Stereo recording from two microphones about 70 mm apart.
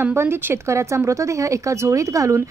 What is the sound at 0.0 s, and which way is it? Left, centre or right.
A woman's voice, right.